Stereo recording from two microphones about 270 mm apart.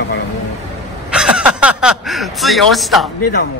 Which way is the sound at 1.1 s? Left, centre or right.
Centre.